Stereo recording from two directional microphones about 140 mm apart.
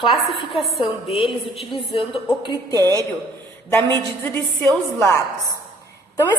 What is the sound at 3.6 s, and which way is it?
Speech, 15° left (ahead or behind).